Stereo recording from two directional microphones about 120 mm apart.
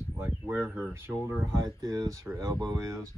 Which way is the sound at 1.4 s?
30° right (ahead or behind).